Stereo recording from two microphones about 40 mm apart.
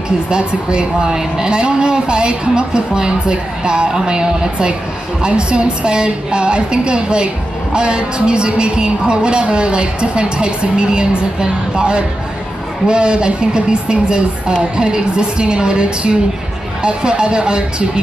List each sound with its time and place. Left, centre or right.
0.3 s speech: right